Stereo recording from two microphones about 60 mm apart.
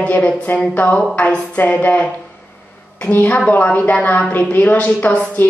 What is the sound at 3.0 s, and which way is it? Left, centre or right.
A woman's voice, left.